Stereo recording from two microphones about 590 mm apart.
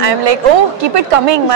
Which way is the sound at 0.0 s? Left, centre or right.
Right.